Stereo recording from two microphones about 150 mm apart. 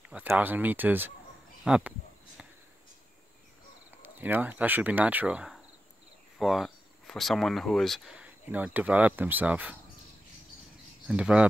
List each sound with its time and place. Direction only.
0.1 s speech: 10° right (ahead or behind)
1.6 s a sound: 5° right (ahead or behind)
4.0 s speech: 10° right (ahead or behind)
11.1 s speech: 5° right (ahead or behind)